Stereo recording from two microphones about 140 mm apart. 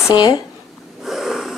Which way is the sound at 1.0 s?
5° right (ahead or behind).